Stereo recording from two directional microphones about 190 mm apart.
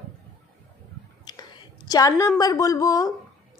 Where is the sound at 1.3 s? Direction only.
20° left (ahead or behind).